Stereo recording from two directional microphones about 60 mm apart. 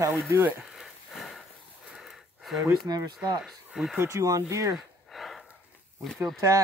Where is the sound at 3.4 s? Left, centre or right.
Centre.